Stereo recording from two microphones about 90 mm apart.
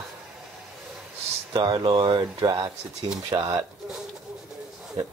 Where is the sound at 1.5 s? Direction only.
55° right (ahead or behind).